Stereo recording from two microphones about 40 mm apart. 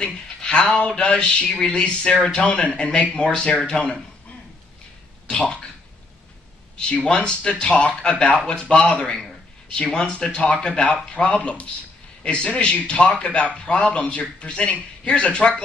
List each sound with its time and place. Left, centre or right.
0.0 s a man's voice: left
7.1 s a man's voice: left